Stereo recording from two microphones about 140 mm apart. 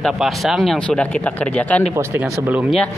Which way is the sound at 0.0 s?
Centre (ahead or behind).